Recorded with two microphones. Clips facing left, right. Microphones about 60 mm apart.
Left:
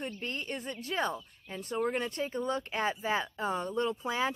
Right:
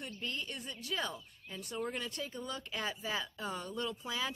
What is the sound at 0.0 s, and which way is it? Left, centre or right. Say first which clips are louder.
Speech: left 4 dB; left.